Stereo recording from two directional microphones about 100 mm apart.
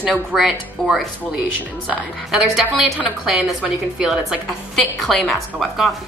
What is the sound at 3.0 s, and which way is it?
A woman's voice, 10° right (ahead or behind).